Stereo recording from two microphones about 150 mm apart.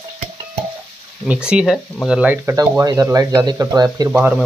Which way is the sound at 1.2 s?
5° right (ahead or behind).